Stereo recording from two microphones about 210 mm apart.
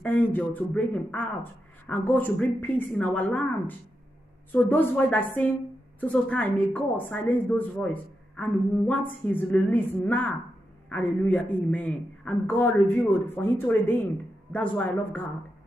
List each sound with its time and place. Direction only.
0.0 s a woman's voice: 10° left (ahead or behind)